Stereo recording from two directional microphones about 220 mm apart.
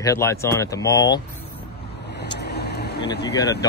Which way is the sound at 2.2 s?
50° left (ahead or behind).